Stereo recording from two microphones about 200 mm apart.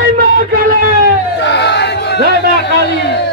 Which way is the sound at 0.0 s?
50° right (ahead or behind).